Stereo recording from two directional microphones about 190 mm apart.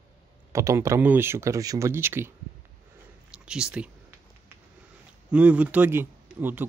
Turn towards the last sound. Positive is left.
turn(degrees=-10)  # may be behind; listen again after turning